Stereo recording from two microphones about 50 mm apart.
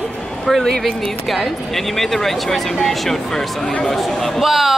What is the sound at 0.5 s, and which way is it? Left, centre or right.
A woman's voice, centre.